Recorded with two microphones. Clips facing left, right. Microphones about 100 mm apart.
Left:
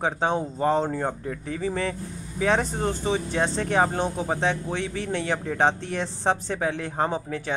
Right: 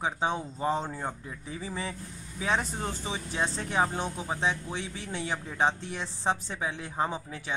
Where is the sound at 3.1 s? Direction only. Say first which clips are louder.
Left 7 dB; 60° left (ahead or behind).